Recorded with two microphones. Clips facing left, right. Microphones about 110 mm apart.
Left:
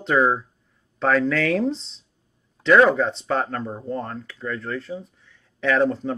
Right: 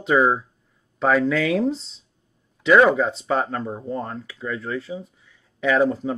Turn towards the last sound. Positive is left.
turn(degrees=-5)  # may be behind; listen again after turning